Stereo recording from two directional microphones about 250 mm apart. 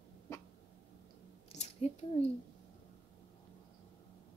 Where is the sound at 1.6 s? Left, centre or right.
Left.